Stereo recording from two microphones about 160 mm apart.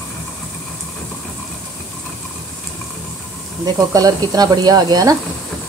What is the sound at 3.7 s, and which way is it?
Speech, 25° right (ahead or behind).